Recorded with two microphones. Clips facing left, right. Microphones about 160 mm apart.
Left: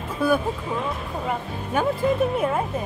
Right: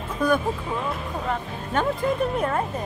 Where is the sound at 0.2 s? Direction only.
5° left (ahead or behind).